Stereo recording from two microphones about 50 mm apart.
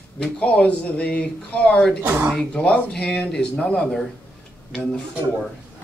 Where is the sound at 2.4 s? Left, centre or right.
Centre.